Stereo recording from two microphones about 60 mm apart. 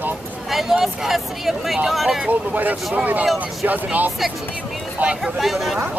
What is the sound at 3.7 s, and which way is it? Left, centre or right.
Speech, right.